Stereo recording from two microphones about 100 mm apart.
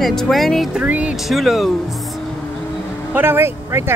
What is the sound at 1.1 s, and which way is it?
Speech, centre (ahead or behind).